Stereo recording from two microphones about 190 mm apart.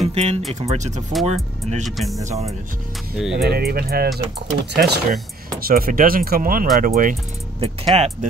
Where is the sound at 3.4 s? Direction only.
55° right (ahead or behind).